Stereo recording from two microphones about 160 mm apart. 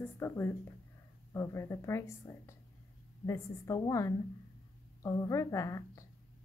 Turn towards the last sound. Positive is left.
turn(degrees=20)  # may be behind; listen again after turning